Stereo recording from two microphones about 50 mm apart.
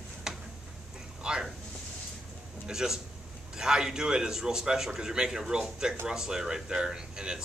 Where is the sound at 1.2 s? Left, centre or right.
Centre.